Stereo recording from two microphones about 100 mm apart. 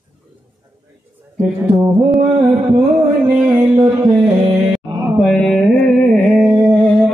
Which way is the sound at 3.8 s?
45° right (ahead or behind).